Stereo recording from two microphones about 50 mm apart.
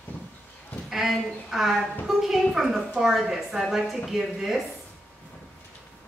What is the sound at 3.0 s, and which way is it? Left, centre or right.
A woman's voice, centre.